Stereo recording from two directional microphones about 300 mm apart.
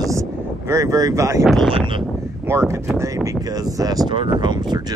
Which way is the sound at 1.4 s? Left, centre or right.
Centre.